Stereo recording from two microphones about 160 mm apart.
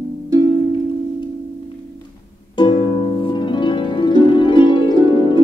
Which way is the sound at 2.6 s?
35° left (ahead or behind).